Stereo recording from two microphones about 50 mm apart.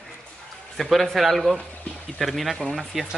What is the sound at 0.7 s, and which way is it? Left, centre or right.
Speech, centre.